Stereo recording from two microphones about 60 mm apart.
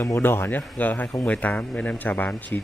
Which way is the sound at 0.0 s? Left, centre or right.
Left.